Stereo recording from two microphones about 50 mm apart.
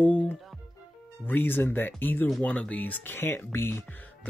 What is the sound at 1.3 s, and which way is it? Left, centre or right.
Speech, left.